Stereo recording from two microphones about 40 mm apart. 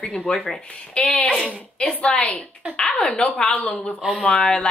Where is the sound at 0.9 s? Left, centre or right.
Left.